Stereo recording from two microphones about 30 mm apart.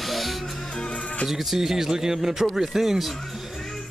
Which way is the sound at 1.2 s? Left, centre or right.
Centre.